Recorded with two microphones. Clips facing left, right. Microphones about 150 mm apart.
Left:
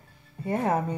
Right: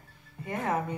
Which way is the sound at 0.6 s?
30° left (ahead or behind).